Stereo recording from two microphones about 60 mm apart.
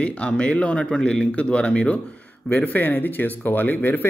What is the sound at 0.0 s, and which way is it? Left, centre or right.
Speech, centre.